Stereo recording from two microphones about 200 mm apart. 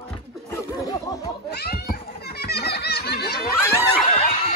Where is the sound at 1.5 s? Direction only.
50° left (ahead or behind).